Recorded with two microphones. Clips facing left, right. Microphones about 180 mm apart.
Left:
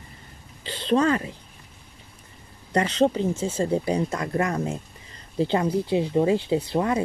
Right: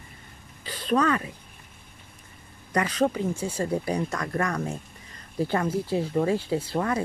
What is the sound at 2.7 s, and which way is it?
Speech, 25° left (ahead or behind).